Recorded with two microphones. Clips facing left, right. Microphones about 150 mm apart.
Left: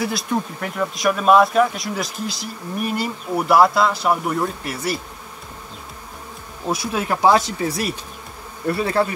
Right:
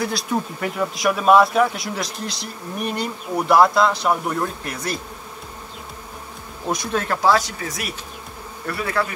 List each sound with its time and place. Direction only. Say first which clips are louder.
0.0 s speech: left 1 dB; centre (ahead or behind)
6.7 s speech: left 1 dB; 5° left (ahead or behind); by 9.0 s 25° left (ahead or behind)